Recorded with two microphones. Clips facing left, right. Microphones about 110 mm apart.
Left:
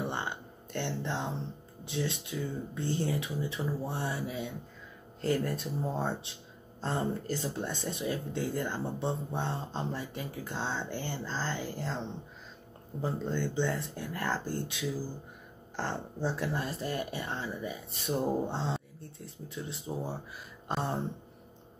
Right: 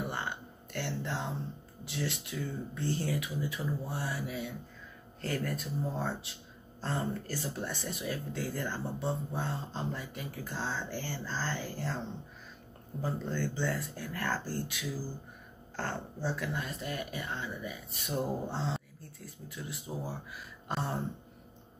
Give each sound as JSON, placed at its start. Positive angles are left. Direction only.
{"t": 0.0, "sound": "a sound", "side_deg": 20}
{"t": 0.7, "sound": "speech", "side_deg": 20}
{"t": 13.0, "sound": "speech", "side_deg": 20}
{"t": 16.3, "sound": "speech", "side_deg": 35}